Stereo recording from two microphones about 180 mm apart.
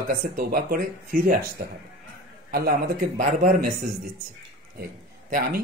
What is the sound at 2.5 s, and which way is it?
Speech, 55° right (ahead or behind).